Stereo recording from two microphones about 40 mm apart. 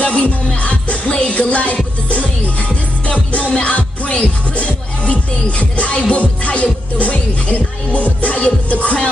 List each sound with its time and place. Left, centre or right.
0.0 s music: left
4.1 s music: left